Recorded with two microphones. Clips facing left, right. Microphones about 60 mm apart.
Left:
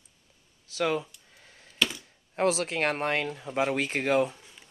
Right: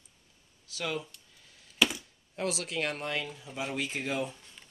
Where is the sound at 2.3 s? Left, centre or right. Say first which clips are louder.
Left 7 dB; left.